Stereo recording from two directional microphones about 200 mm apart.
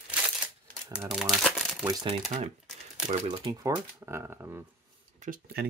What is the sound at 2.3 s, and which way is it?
Speech, 35° right (ahead or behind).